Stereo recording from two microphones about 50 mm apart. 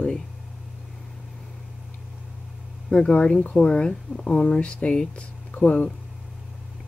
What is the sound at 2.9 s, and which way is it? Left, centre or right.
Speech, left.